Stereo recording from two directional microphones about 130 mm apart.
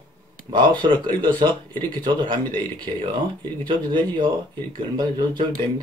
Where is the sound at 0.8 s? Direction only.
35° right (ahead or behind).